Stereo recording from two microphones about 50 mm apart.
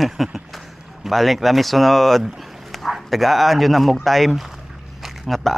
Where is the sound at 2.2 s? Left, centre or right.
Centre.